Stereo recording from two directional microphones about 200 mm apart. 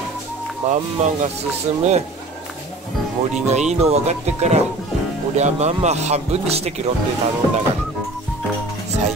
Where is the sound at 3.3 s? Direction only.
35° right (ahead or behind).